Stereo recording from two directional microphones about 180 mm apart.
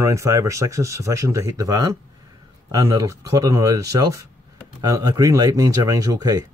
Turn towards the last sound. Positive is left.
turn(degrees=-20)  # may be behind; listen again after turning